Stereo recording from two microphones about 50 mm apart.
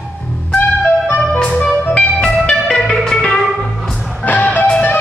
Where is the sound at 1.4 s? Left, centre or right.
Left.